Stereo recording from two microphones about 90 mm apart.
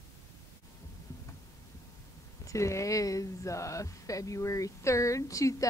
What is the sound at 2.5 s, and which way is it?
Speech, 35° left (ahead or behind).